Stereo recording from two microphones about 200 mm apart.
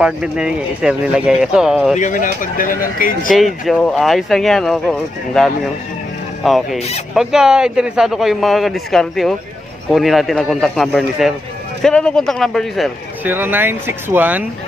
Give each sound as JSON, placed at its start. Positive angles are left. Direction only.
{"t": 0.0, "sound": "speech", "side_deg": -5}
{"t": 2.0, "sound": "speech", "side_deg": 40}
{"t": 3.3, "sound": "speech", "side_deg": 0}
{"t": 13.2, "sound": "speech", "side_deg": -10}